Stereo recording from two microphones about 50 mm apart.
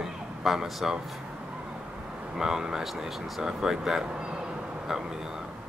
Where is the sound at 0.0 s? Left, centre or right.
Centre.